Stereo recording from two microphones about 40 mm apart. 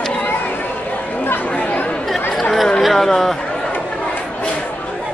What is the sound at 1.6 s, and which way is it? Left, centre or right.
Chatter, left.